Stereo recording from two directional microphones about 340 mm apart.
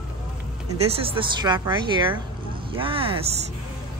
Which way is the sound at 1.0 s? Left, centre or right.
Centre.